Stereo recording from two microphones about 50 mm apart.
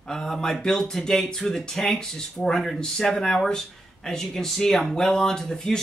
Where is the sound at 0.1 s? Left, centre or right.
Centre.